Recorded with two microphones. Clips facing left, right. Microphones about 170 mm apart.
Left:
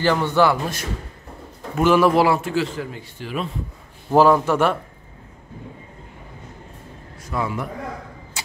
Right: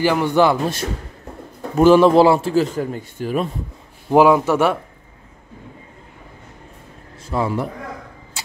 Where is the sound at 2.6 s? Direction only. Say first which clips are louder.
Right 5 dB; 45° right (ahead or behind).